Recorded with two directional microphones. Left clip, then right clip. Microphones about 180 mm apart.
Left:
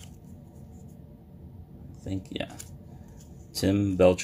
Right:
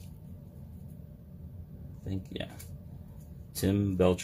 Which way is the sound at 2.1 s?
25° left (ahead or behind).